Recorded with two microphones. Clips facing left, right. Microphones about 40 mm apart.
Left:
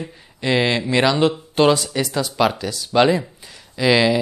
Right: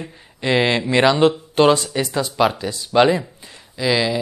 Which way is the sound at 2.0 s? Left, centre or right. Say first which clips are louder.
Right 1 dB; right.